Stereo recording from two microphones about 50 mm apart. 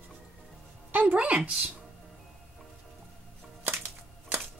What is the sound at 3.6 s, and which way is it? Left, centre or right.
Music, right.